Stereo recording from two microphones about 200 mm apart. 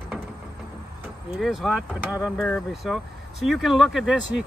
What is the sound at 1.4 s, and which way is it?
Speech, centre (ahead or behind).